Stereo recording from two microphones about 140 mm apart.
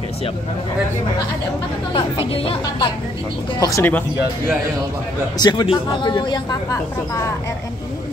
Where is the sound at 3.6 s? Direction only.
20° left (ahead or behind).